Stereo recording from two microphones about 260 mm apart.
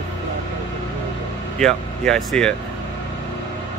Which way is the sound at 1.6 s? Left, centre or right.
Centre.